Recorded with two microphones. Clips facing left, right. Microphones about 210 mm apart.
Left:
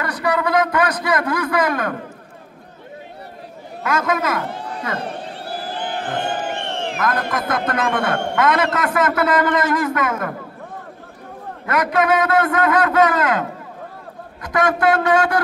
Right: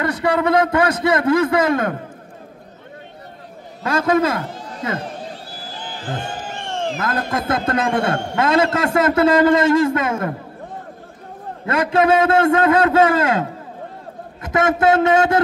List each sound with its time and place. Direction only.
0.0 s a man's voice: 25° right (ahead or behind)
3.8 s a man's voice: 30° right (ahead or behind)
4.4 s a sound: 60° left (ahead or behind)
7.0 s a man's voice: 25° right (ahead or behind)
11.6 s a man's voice: 25° right (ahead or behind)